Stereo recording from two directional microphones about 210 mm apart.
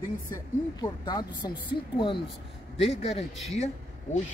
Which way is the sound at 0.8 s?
20° left (ahead or behind).